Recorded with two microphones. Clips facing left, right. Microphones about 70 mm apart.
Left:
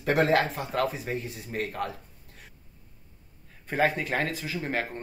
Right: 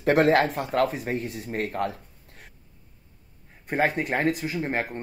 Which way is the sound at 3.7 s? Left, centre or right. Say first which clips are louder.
Right 2 dB; right.